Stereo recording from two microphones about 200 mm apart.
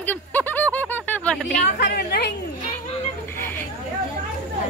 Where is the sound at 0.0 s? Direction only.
10° left (ahead or behind).